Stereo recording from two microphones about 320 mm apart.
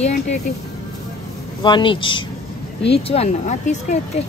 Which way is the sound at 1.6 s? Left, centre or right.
Centre.